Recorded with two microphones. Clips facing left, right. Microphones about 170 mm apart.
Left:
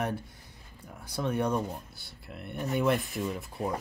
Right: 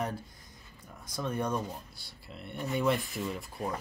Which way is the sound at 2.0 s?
55° left (ahead or behind).